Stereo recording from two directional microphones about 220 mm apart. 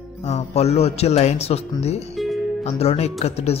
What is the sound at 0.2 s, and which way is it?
A woman's voice, 30° left (ahead or behind).